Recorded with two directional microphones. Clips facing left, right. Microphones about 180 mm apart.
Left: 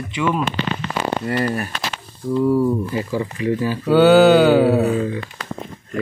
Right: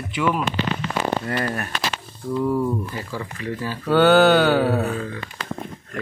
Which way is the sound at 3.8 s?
5° left (ahead or behind).